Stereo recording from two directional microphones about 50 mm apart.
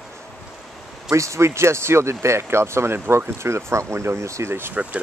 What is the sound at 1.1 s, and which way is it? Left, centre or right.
Speech, right.